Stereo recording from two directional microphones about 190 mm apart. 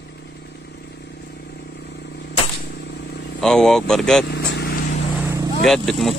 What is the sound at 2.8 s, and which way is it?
Vehicle, 65° left (ahead or behind).